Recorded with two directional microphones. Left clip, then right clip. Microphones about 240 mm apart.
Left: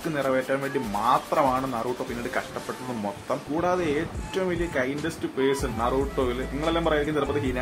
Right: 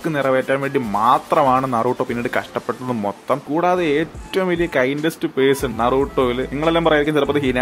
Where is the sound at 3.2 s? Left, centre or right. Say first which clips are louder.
Right 8 dB; right.